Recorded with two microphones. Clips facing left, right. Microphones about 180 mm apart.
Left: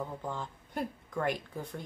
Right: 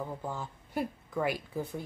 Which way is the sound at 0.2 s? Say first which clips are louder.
Even; 5° right (ahead or behind).